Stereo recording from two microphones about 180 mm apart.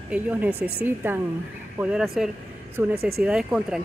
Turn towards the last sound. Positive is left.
turn(degrees=-5)  # may be behind; listen again after turning